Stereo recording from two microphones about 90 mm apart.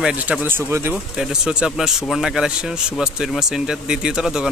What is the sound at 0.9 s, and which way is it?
Speech, 10° right (ahead or behind).